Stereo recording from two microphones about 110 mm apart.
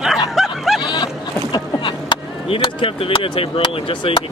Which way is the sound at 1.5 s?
45° left (ahead or behind).